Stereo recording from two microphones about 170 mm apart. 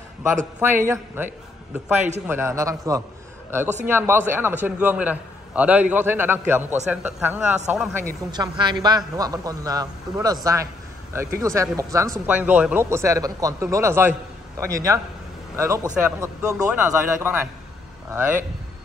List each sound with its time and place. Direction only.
0.6 s a man's voice: 15° right (ahead or behind)
8.3 s a man's voice: 25° right (ahead or behind)